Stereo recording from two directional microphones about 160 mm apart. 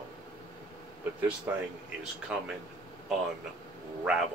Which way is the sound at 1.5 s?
15° right (ahead or behind).